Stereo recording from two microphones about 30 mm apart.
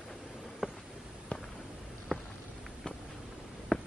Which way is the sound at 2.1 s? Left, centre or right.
Left.